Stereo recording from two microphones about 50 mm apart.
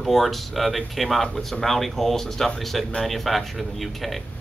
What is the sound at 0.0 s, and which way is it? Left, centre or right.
Speech, centre.